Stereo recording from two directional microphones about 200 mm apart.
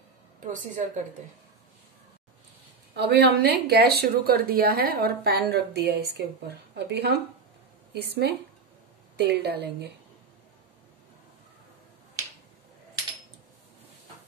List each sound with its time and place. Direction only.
0.4 s a woman's voice: 40° right (ahead or behind)
3.0 s a woman's voice: 55° right (ahead or behind)